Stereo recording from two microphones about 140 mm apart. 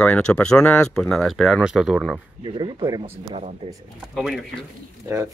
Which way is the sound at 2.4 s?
35° right (ahead or behind).